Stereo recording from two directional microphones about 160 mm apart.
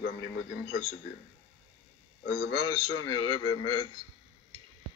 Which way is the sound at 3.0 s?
25° left (ahead or behind).